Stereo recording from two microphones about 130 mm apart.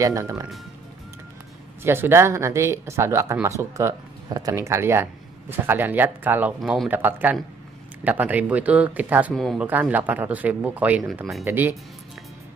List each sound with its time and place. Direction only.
0.0 s speech: 25° right (ahead or behind)
1.8 s speech: 15° right (ahead or behind)
6.6 s speech: centre (ahead or behind)
6.9 s speech: 15° right (ahead or behind)
9.3 s speech: centre (ahead or behind)
9.6 s speech: 10° right (ahead or behind)